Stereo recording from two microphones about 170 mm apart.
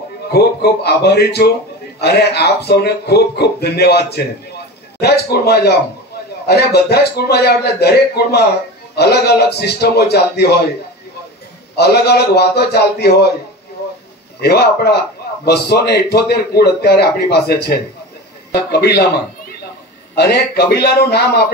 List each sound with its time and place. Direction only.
0.3 s a man's voice: 70° left (ahead or behind)
11.7 s a man's voice: 75° left (ahead or behind)
14.4 s a man's voice: 70° left (ahead or behind)